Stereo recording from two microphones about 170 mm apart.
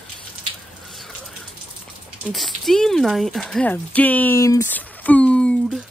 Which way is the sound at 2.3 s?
Centre (ahead or behind).